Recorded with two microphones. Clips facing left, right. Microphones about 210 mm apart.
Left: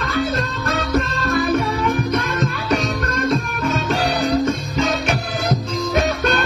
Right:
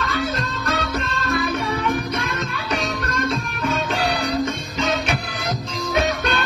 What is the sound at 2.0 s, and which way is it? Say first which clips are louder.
Music: left 5 dB; 45° left (ahead or behind).